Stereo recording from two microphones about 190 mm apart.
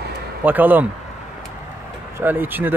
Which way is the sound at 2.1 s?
10° right (ahead or behind).